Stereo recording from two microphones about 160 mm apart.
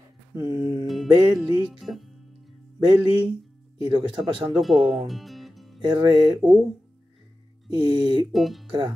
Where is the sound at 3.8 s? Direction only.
30° right (ahead or behind).